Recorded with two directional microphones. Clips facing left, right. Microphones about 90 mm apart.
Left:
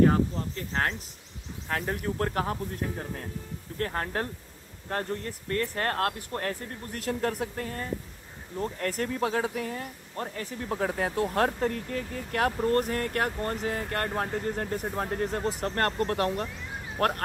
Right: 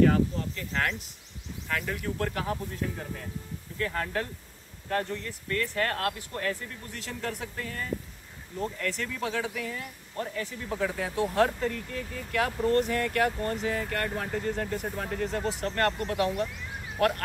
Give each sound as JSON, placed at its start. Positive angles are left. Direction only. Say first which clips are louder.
{"t": 0.0, "sound": "cricket", "louder": "even", "side_deg": 35}
{"t": 1.7, "sound": "speech", "louder": "left 2 dB", "side_deg": 40}